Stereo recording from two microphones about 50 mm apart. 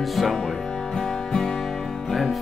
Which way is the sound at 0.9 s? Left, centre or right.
Centre.